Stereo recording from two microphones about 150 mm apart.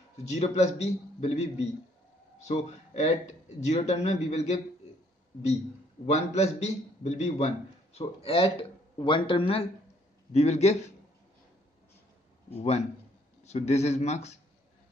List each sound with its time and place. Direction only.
0.3 s a man's voice: 45° left (ahead or behind)
2.9 s a man's voice: 50° left (ahead or behind)
6.0 s a man's voice: 45° left (ahead or behind)
12.4 s a man's voice: 45° left (ahead or behind)